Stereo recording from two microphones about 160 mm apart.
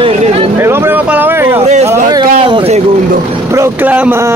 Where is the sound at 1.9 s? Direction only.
25° right (ahead or behind).